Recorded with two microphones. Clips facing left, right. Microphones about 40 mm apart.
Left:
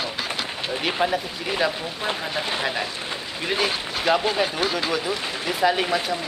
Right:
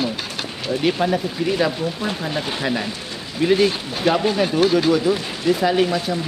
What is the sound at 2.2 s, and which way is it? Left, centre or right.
Speech, centre.